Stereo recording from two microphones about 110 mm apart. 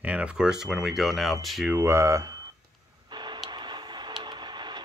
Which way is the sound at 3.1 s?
40° right (ahead or behind).